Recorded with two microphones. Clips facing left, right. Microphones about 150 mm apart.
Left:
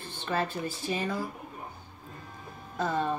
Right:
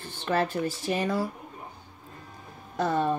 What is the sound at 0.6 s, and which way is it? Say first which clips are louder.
Speech: right 4 dB; 85° right.